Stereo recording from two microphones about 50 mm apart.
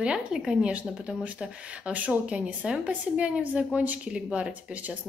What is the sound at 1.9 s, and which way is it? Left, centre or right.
A woman's voice, right.